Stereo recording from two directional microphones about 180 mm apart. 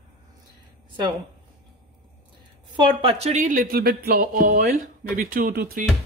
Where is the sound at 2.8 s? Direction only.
30° right (ahead or behind); by 5.8 s 55° right (ahead or behind).